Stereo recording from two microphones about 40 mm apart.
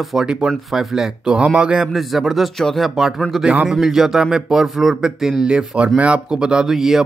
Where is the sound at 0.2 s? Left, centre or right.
Right.